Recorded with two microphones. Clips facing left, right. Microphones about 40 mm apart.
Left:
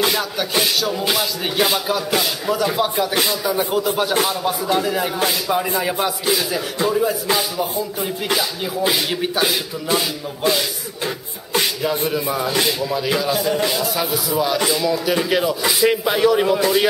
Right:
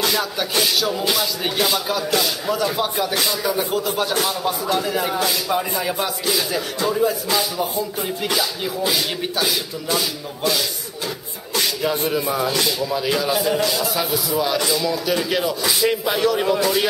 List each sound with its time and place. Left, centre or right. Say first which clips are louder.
0.1 s rapping: left 1 dB; centre
1.0 s speech: left 1 dB; centre
2.4 s rapping: left 2 dB; centre
4.2 s speech: left 2 dB; centre
4.7 s rapping: left 1 dB; centre
5.5 s speech: left 2 dB; centre
6.9 s rapping: even; centre
8.8 s a sound: left 3 dB; centre
11.8 s rapping: even; centre
14.6 s speech: left 2 dB; centre